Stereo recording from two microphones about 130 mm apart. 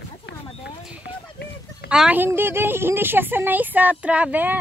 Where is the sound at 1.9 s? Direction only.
10° right (ahead or behind).